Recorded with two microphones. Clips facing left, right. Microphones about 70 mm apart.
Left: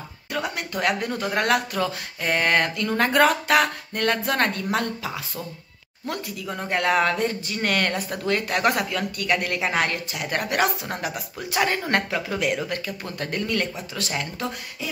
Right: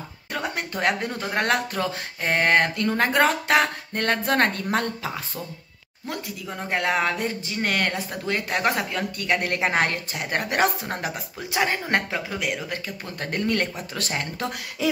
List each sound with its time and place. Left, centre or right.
0.3 s speech: right
2.9 s speech: right
6.0 s speech: centre
11.5 s speech: centre
12.3 s speech: centre
13.2 s speech: right